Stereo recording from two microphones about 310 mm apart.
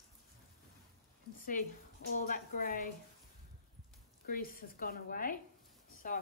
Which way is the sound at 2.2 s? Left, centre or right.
Left.